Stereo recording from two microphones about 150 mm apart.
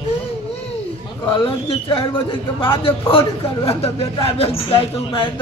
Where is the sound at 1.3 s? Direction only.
35° left (ahead or behind).